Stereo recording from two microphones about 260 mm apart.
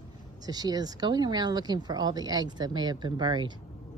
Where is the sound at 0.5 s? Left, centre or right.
Centre.